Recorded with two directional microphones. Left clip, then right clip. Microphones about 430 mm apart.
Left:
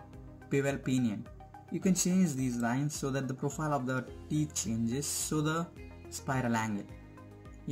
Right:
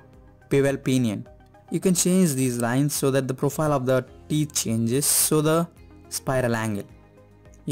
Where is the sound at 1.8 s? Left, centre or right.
Right.